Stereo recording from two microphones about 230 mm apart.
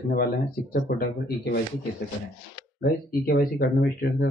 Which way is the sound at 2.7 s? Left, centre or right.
Left.